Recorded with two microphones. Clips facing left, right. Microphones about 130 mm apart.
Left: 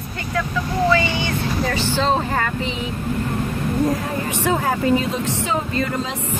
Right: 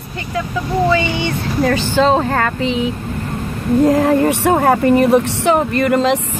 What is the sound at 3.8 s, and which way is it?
Speech, 75° right (ahead or behind).